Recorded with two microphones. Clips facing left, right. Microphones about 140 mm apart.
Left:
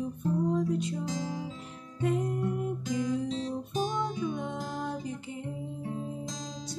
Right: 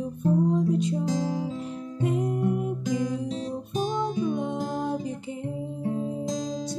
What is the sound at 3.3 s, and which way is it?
Guitar, 15° right (ahead or behind).